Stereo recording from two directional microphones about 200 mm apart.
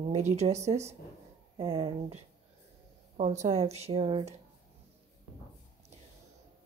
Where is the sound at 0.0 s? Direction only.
35° right (ahead or behind).